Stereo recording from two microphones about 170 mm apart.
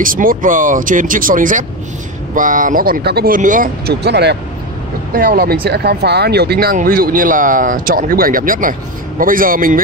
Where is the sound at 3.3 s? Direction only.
50° right (ahead or behind).